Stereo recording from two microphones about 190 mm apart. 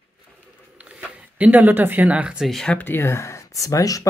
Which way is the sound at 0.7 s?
5° right (ahead or behind).